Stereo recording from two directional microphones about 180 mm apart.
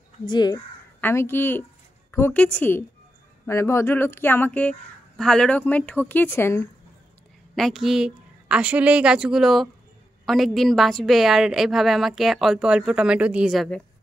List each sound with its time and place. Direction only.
0.3 s speech: 25° left (ahead or behind)
1.0 s a woman's voice: 10° left (ahead or behind)
7.5 s a woman's voice: centre (ahead or behind)